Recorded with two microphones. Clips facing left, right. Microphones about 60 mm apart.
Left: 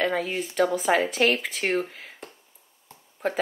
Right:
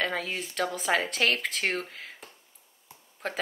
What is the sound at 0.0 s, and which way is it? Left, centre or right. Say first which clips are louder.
Speech: left 5 dB; centre.